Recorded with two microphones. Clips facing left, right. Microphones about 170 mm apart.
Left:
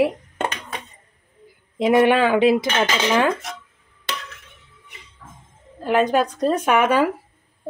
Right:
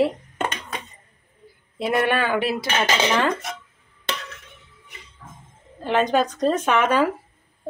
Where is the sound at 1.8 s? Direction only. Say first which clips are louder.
Left 6 dB; 15° left (ahead or behind).